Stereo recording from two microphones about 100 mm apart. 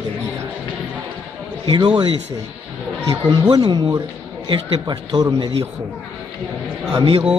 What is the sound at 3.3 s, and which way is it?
A man's voice, 45° right (ahead or behind).